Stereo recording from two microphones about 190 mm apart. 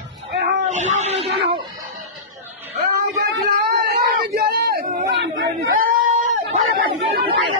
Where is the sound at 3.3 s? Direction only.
60° right (ahead or behind).